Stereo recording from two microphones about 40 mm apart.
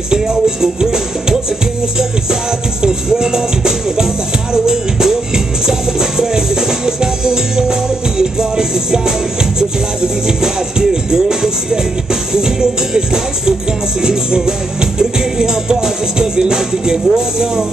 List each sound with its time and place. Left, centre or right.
0.1 s music: centre
2.8 s music: centre